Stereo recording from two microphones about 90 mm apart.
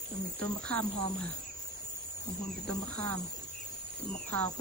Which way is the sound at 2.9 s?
15° left (ahead or behind).